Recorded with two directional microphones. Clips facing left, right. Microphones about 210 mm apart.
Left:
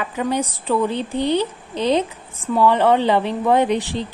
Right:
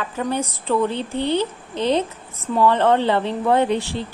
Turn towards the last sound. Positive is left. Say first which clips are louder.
# left 1 dB
turn(degrees=15)  # may be behind; listen again after turning